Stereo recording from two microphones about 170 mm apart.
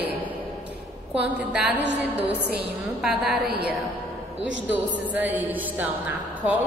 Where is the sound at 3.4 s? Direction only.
70° right (ahead or behind).